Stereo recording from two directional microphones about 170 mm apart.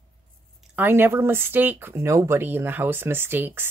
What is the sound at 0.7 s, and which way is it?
Speech, 10° right (ahead or behind).